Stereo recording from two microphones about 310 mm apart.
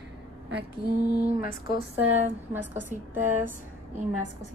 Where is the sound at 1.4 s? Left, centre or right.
Left.